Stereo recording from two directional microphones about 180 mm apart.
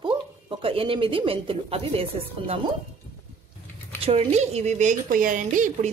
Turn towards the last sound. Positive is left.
turn(degrees=-45)  # may be behind; listen again after turning